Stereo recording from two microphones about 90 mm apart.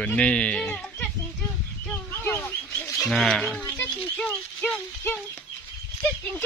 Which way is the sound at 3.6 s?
25° left (ahead or behind).